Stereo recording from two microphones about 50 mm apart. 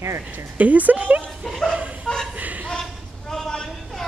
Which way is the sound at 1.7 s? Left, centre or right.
Right.